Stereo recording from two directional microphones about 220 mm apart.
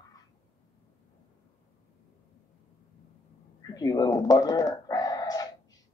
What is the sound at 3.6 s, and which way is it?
Dog, 15° left (ahead or behind).